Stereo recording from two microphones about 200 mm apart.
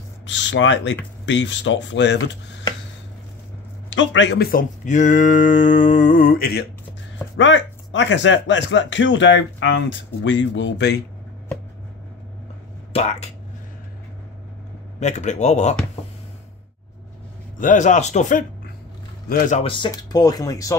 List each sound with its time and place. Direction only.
0.3 s speech: 65° left (ahead or behind)
3.9 s speech: 70° left (ahead or behind); by 6.6 s 50° left (ahead or behind)
7.3 s speech: 65° left (ahead or behind)
12.9 s speech: 35° left (ahead or behind)
15.0 s speech: 35° left (ahead or behind)
17.6 s a man's voice: 40° left (ahead or behind)
19.6 s speech: 25° left (ahead or behind)